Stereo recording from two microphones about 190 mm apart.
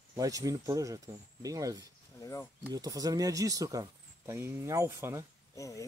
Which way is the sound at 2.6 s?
20° right (ahead or behind).